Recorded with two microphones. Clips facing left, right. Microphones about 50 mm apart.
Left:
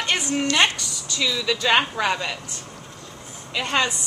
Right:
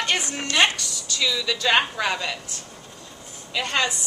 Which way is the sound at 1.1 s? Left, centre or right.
Centre.